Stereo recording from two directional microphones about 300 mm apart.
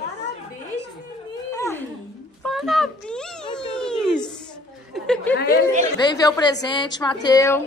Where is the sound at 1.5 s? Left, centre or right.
Centre.